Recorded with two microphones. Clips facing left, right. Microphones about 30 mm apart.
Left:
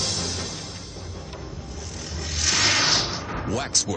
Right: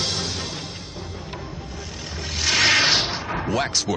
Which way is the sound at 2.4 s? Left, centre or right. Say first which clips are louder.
Right 4 dB; right.